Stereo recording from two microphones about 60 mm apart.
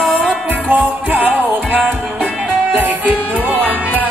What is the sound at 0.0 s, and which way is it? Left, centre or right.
Music, centre.